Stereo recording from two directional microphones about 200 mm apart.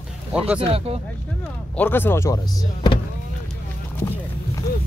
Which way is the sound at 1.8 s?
10° left (ahead or behind).